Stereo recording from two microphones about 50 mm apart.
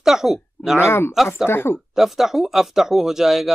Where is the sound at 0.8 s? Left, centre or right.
Left.